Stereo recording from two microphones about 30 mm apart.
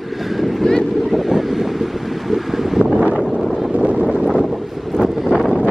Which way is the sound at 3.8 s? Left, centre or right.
Right.